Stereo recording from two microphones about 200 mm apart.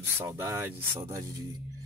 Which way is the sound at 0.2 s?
15° right (ahead or behind).